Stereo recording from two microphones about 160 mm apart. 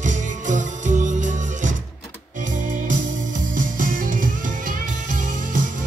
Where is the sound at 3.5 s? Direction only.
55° right (ahead or behind).